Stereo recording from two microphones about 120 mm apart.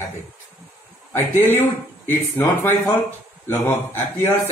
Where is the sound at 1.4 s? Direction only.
20° left (ahead or behind).